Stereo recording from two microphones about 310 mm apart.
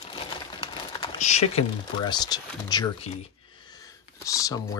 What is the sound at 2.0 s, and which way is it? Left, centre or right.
Speech, centre.